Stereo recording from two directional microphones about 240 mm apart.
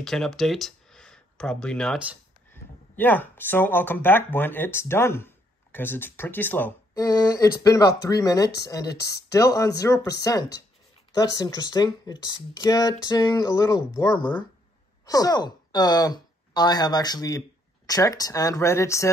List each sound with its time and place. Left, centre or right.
0.0 s speech: centre